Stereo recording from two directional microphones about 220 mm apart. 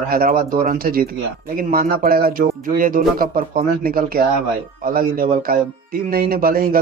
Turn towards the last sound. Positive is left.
turn(degrees=-40)  # may be behind; listen again after turning